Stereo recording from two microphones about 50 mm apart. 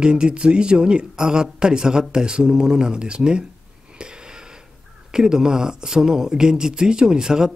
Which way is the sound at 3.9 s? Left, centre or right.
Centre.